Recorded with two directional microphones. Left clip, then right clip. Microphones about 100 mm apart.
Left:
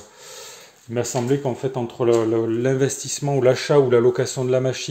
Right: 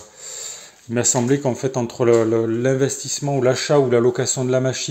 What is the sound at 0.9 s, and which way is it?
Speech, 35° right (ahead or behind).